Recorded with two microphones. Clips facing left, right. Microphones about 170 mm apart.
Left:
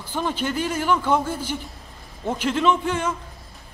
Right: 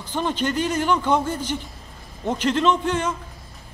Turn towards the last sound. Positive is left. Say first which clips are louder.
# even
turn(degrees=10)  # may be behind; listen again after turning